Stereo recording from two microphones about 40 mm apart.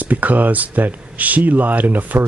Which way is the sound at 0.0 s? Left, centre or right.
Right.